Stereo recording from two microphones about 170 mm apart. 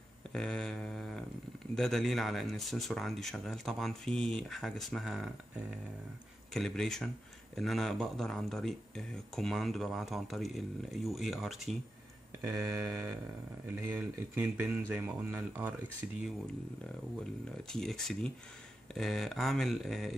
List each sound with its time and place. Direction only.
0.3 s a sound: 5° left (ahead or behind)
1.8 s speech: centre (ahead or behind)
6.5 s speech: centre (ahead or behind)
12.4 s speech: 15° right (ahead or behind)
17.2 s speech: 5° left (ahead or behind)